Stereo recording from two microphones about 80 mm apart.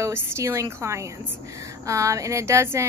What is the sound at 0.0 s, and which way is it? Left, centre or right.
Speech, right.